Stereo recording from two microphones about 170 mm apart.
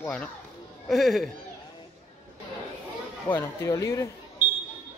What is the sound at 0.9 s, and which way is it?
Speech, centre (ahead or behind).